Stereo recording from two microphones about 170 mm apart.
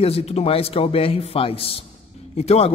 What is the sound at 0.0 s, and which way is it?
A man's voice, 35° left (ahead or behind).